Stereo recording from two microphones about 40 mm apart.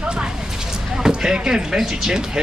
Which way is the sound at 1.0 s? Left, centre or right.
Centre.